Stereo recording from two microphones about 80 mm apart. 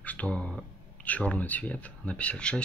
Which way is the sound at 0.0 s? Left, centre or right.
Centre.